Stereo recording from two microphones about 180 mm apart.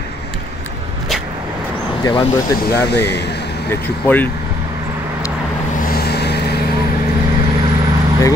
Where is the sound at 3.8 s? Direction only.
10° left (ahead or behind).